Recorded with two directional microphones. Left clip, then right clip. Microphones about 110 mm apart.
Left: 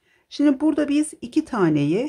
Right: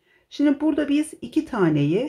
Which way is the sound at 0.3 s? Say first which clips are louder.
Left 1 dB; 30° left (ahead or behind).